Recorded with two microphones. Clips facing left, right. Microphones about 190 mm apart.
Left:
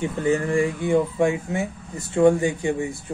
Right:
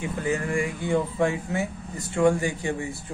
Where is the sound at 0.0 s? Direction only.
30° left (ahead or behind).